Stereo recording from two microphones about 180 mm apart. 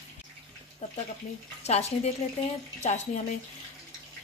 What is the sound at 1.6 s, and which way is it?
Speech, 35° left (ahead or behind).